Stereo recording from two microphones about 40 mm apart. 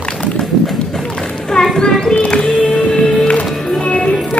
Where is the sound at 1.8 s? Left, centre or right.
Centre.